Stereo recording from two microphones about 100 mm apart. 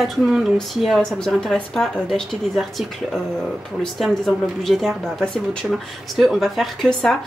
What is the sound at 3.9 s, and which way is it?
A woman's voice, centre (ahead or behind).